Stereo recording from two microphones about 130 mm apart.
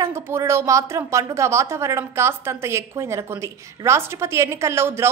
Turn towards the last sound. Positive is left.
turn(degrees=-20)  # may be behind; listen again after turning